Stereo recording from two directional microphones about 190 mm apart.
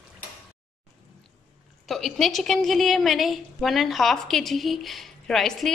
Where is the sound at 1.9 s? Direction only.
Centre (ahead or behind).